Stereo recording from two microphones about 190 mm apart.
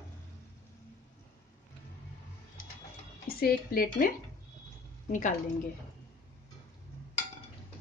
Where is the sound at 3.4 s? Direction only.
50° left (ahead or behind).